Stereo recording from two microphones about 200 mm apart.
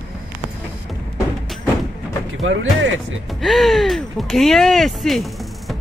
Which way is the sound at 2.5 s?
70° right (ahead or behind).